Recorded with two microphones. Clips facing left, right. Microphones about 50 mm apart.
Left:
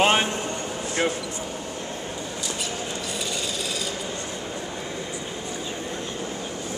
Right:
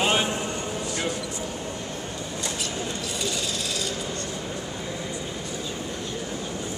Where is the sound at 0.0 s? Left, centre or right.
Left.